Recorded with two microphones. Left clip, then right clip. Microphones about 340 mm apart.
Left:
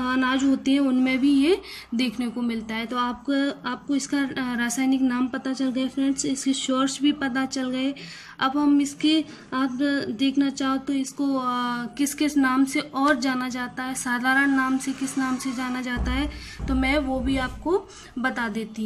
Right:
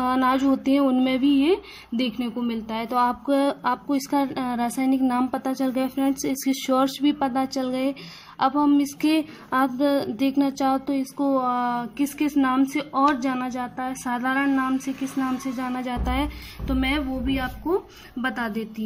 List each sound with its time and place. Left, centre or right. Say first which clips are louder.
0.0 s speech: right 2 dB; centre
4.0 s a woman's voice: right 2 dB; centre